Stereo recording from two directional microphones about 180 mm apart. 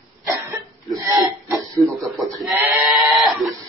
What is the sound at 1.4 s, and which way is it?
Speech, 20° right (ahead or behind).